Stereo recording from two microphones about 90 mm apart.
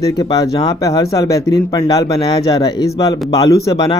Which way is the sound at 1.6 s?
55° left (ahead or behind).